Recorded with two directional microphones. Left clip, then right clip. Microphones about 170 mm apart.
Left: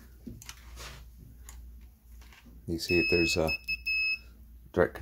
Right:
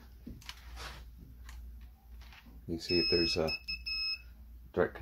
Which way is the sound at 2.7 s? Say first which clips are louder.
Left 4 dB; 60° left (ahead or behind).